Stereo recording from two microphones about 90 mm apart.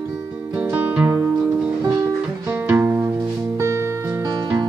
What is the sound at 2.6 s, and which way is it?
Music, 20° right (ahead or behind).